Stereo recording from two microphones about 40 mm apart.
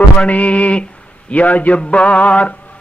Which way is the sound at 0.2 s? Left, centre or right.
Left.